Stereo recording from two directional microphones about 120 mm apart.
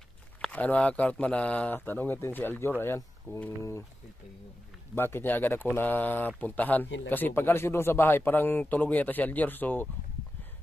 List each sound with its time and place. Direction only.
0.4 s speech: 10° left (ahead or behind)
4.9 s speech: 20° left (ahead or behind)